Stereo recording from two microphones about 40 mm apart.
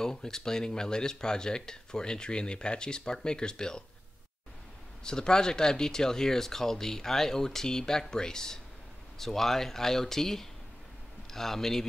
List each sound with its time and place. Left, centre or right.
0.0 s speech: centre
5.0 s speech: centre